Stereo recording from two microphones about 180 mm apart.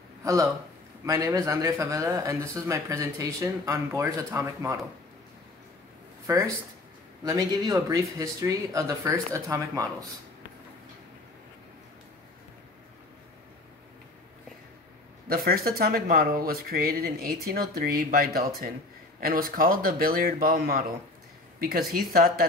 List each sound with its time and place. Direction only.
0.2 s speech: 20° right (ahead or behind)
6.2 s speech: 15° right (ahead or behind)
15.2 s speech: 55° right (ahead or behind)